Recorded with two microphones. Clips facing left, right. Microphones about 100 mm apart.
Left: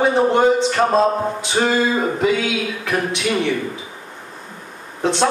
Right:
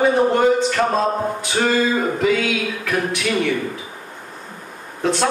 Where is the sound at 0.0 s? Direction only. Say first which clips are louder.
Left 1 dB; 25° left (ahead or behind).